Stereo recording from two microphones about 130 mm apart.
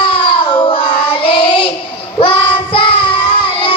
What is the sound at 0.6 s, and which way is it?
Child singing, 35° left (ahead or behind).